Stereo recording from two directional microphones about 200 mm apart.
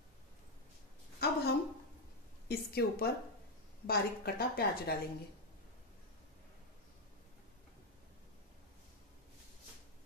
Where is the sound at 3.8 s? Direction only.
50° left (ahead or behind).